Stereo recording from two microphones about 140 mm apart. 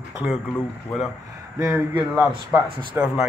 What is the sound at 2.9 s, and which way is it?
Speech, 5° right (ahead or behind).